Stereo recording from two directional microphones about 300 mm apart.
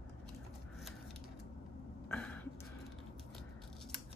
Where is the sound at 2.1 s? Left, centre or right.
Centre.